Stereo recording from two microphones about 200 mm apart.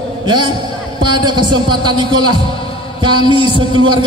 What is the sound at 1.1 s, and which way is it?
A man's voice, 20° right (ahead or behind).